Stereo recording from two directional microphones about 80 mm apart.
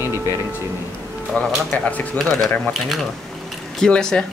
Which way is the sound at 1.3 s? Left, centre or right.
Centre.